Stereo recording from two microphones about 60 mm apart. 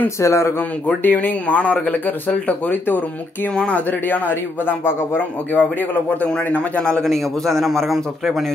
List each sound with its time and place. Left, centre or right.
0.2 s a man's voice: left
1.0 s speech: left
3.5 s speech: centre
4.1 s speech: left
5.6 s speech: left
6.8 s a man's voice: centre